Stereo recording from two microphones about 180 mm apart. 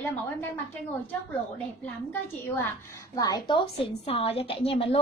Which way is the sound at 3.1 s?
20° left (ahead or behind).